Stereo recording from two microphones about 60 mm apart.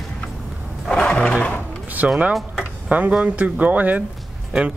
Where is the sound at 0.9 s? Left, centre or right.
Centre.